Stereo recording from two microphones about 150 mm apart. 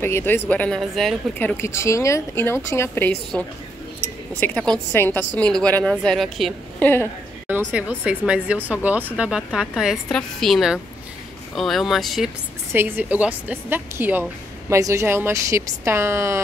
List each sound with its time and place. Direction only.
0.0 s a woman's voice: 15° left (ahead or behind)
1.4 s a woman's voice: 15° left (ahead or behind)
4.0 s a sound: 10° left (ahead or behind)
4.9 s a woman's voice: 15° left (ahead or behind)
7.4 s a woman's voice: 10° right (ahead or behind)
12.7 s speech: 15° right (ahead or behind)